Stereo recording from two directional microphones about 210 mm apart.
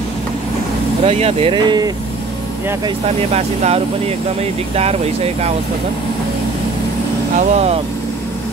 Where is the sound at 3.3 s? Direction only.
30° right (ahead or behind).